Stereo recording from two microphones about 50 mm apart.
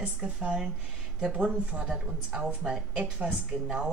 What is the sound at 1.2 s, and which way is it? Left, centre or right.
A woman's voice, right.